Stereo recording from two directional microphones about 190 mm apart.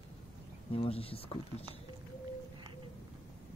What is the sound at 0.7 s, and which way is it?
Speech, 30° left (ahead or behind).